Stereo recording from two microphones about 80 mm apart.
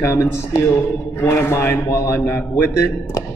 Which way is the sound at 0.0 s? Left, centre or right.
Left.